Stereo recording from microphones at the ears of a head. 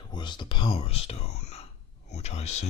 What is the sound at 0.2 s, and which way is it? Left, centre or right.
Speech, left.